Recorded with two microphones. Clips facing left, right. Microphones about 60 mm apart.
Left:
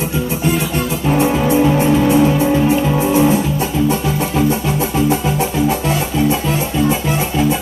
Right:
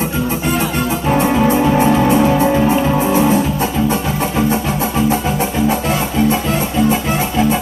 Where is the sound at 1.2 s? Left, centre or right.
Right.